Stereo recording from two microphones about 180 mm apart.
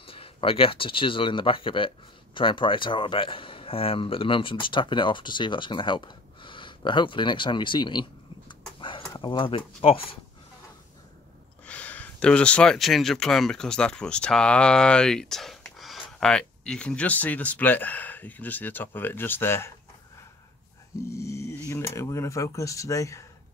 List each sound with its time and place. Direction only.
0.0 s speech: 30° left (ahead or behind)
11.6 s speech: 5° left (ahead or behind)
21.1 s speech: 15° left (ahead or behind)